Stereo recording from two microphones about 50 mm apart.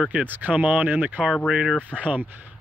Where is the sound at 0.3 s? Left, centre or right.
Right.